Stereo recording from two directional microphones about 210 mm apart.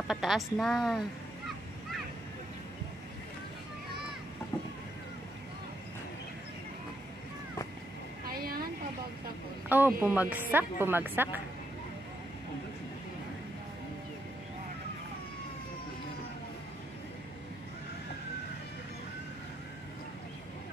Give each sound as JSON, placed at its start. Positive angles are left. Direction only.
{"t": 0.1, "sound": "a woman's voice", "side_deg": 0}
{"t": 8.3, "sound": "a sound", "side_deg": -45}
{"t": 9.7, "sound": "a woman's voice", "side_deg": -10}